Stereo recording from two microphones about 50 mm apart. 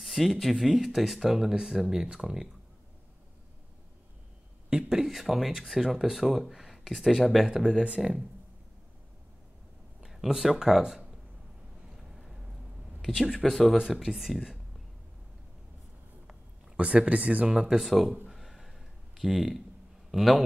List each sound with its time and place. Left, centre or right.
0.0 s speech: centre
4.6 s speech: centre
10.0 s speech: centre
12.0 s boat: centre
13.0 s speech: centre
13.7 s speech: centre
16.3 s a sound: right
17.5 s speech: centre
17.7 s speech: centre
18.3 s a sound: centre
20.1 s a man's voice: centre